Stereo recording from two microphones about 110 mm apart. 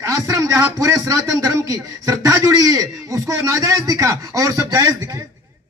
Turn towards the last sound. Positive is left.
turn(degrees=-30)  # may be behind; listen again after turning